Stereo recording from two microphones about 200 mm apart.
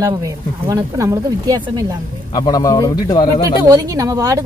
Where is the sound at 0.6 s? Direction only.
15° right (ahead or behind).